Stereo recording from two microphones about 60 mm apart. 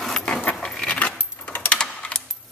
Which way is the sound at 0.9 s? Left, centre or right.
Left.